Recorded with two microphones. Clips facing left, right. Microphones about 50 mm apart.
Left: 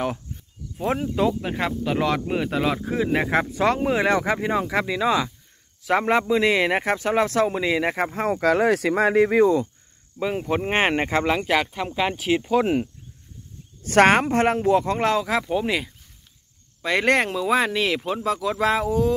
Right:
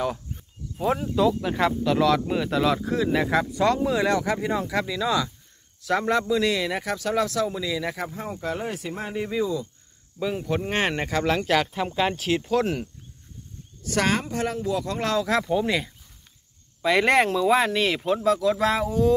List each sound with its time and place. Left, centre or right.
1.1 s speech: left
3.1 s a man's voice: left
7.4 s speech: left
8.2 s speech: left
10.1 s speech: left
11.2 s speech: centre
13.8 s a man's voice: left
15.2 s speech: centre